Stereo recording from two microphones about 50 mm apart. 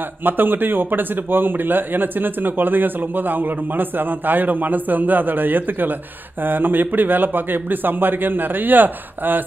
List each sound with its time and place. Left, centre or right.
0.2 s a man's voice: right